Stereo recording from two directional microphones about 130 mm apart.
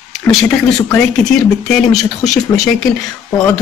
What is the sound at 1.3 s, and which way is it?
Speech, centre (ahead or behind).